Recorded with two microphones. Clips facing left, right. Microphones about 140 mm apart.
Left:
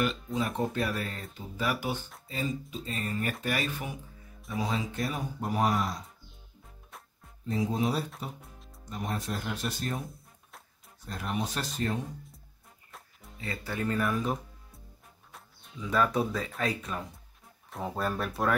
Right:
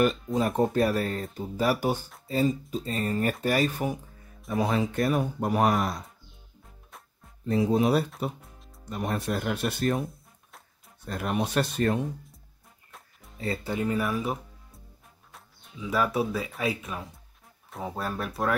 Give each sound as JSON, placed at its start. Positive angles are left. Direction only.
{"t": 0.0, "sound": "speech", "side_deg": -45}
{"t": 4.6, "sound": "speech", "side_deg": -60}
{"t": 7.4, "sound": "speech", "side_deg": -65}
{"t": 10.0, "sound": "music", "side_deg": 0}
{"t": 11.1, "sound": "speech", "side_deg": -65}
{"t": 13.7, "sound": "speech", "side_deg": -15}
{"t": 14.0, "sound": "music", "side_deg": -5}
{"t": 15.3, "sound": "speech", "side_deg": -5}